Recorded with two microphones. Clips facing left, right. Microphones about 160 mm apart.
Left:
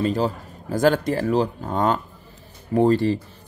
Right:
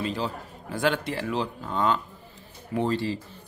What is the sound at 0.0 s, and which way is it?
A man's voice, 45° left (ahead or behind).